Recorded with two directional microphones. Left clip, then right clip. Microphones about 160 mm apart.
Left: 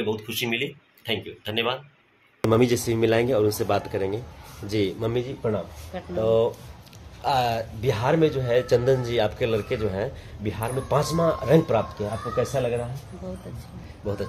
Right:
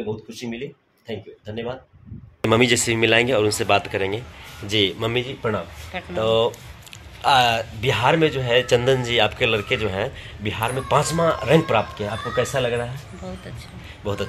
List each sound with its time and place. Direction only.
0.3 s a man's voice: 15° left (ahead or behind); by 12.8 s 5° right (ahead or behind)